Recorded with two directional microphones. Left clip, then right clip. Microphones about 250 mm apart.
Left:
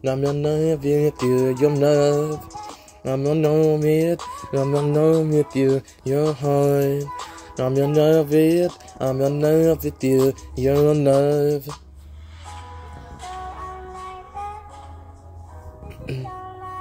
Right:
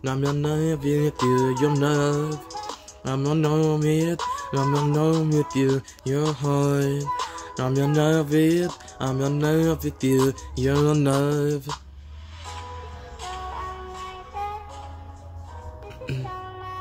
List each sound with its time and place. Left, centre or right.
0.2 s speech: centre
2.3 s speech: right
3.0 s speech: centre
12.4 s music: right
16.1 s music: centre